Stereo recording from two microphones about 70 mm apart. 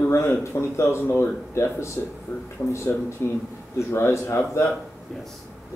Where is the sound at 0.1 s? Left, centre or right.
Left.